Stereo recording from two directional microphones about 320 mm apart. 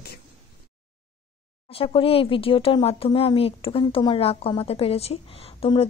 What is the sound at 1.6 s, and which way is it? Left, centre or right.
Speech, centre.